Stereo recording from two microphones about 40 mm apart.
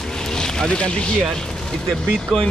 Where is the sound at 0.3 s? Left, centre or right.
Centre.